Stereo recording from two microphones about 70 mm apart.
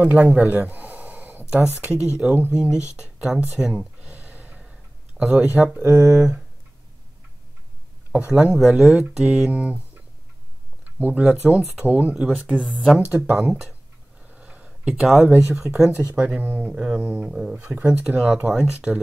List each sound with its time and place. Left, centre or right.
0.0 s a sound: centre
1.8 s speech: centre
2.5 s a sound: centre
5.3 s speech: right
8.1 s speech: centre
9.5 s speech: centre
11.0 s speech: right
11.2 s speech: centre
13.4 s speech: centre
14.2 s a sound: centre
15.1 s speech: centre
16.2 s speech: right
16.7 s speech: centre
17.3 s speech: centre